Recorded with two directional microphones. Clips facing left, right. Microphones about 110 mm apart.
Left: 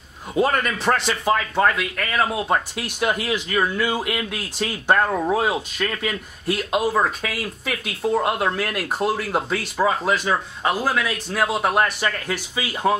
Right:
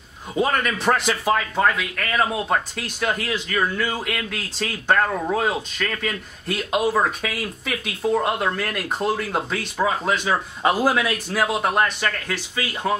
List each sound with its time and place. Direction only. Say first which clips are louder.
0.3 s a man's voice: left 1 dB; centre (ahead or behind)
10.6 s a man's voice: right 5 dB; 10° right (ahead or behind); by 12.9 s 10° left (ahead or behind)